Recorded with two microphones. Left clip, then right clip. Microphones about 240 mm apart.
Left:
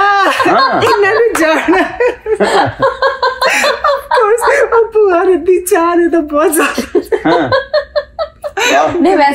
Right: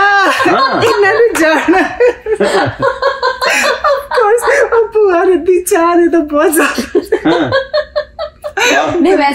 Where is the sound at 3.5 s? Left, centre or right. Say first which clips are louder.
Right 1 dB; centre.